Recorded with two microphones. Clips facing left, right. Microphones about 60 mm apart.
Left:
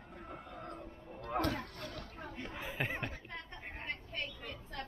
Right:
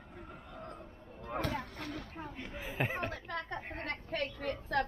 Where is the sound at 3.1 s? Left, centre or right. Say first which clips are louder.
Right 8 dB; right.